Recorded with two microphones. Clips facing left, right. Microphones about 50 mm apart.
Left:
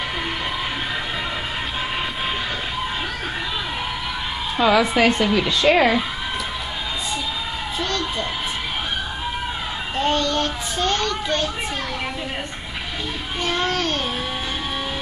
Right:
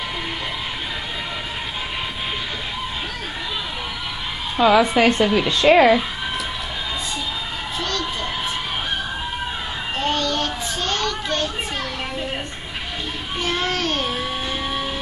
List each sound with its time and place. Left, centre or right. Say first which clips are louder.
4.6 s a woman's voice: right 2 dB; centre
10.0 s child singing: left 2 dB; centre
10.8 s children playing: left 3 dB; centre
13.4 s a sound: left 1 dB; centre